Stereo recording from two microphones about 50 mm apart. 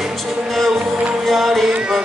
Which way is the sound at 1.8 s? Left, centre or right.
Centre.